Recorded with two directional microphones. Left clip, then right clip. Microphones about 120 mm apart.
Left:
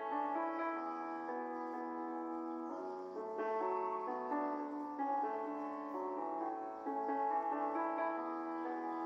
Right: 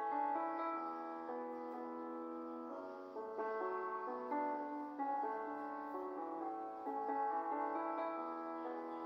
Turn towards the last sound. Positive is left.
turn(degrees=20)  # may be behind; listen again after turning